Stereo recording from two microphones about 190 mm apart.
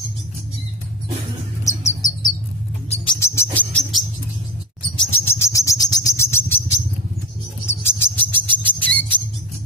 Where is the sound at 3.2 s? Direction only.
15° left (ahead or behind).